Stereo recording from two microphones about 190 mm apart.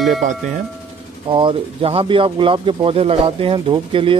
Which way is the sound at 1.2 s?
25° right (ahead or behind).